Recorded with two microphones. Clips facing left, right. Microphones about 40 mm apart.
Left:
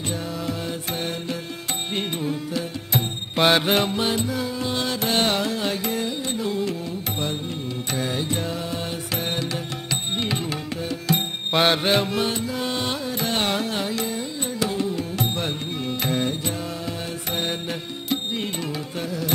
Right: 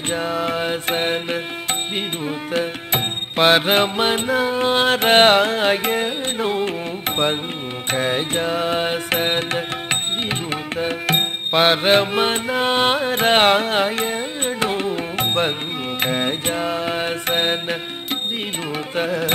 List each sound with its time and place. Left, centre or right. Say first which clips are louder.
0.1 s mantra: right 10 dB; right
3.3 s mantra: right 4 dB; right
7.9 s music: right 6 dB; right
11.5 s music: right 3 dB; right
11.9 s music: right 5 dB; right
16.0 s mantra: right 4 dB; right